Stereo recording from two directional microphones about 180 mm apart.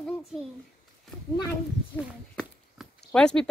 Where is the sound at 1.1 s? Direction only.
Centre (ahead or behind).